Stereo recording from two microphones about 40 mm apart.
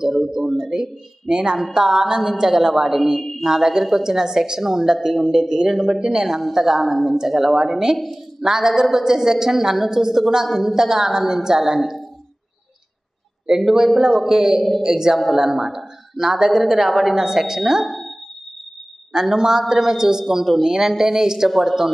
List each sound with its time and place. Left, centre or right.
0.0 s speech: centre
1.3 s speech: right
5.9 s a woman's voice: centre
13.6 s speech: centre
17.8 s a sound: centre
19.1 s speech: centre